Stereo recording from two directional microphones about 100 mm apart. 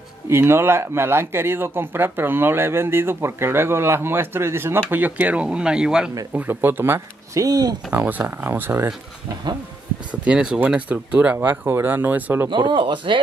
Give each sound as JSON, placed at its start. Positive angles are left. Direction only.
{"t": 0.3, "sound": "speech", "side_deg": -25}
{"t": 6.3, "sound": "speech", "side_deg": -20}
{"t": 7.4, "sound": "speech", "side_deg": -40}
{"t": 7.9, "sound": "speech", "side_deg": -20}
{"t": 10.2, "sound": "speech", "side_deg": -10}
{"t": 12.4, "sound": "speech", "side_deg": -50}